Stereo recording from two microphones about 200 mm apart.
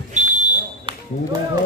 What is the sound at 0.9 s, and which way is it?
Basketball bounce, 25° right (ahead or behind).